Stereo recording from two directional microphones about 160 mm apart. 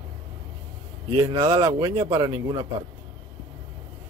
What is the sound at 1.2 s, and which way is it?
Speech, 35° right (ahead or behind).